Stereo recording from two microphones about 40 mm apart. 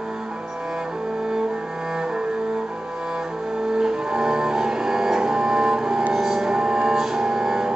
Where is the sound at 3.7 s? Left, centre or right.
Centre.